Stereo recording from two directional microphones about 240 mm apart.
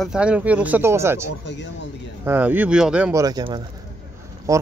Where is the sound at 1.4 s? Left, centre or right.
Left.